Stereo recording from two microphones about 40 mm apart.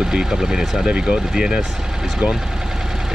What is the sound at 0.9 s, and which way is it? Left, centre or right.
Speech, right.